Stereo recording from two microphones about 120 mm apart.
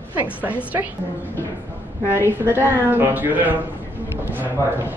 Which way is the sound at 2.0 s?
15° right (ahead or behind).